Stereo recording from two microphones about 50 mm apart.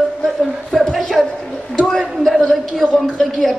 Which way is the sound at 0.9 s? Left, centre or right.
Centre.